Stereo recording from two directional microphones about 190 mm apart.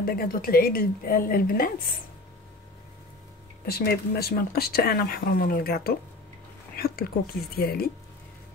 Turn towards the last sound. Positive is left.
turn(degrees=55)  # may be behind; listen again after turning